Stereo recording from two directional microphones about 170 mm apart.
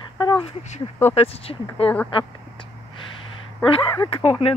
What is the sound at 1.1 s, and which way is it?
Speech, 35° left (ahead or behind).